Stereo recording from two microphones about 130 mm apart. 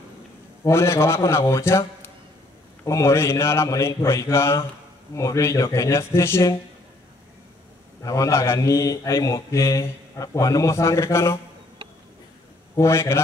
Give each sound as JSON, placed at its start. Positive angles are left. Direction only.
{"t": 0.7, "sound": "speech", "side_deg": 20}
{"t": 8.0, "sound": "speech", "side_deg": 25}
{"t": 12.7, "sound": "speech", "side_deg": 20}